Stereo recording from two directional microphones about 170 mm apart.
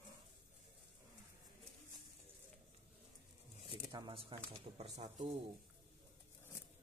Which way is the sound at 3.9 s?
30° right (ahead or behind).